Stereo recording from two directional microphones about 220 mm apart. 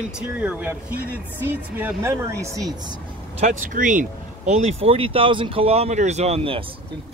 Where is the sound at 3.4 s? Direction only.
35° right (ahead or behind).